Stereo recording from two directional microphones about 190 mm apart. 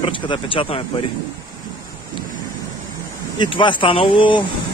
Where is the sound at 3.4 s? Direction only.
25° left (ahead or behind).